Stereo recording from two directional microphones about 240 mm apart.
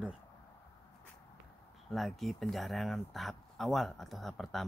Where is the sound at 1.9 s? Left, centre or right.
Centre.